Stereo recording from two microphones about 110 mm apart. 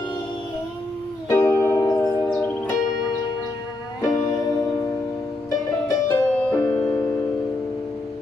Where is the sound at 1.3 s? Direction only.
25° left (ahead or behind).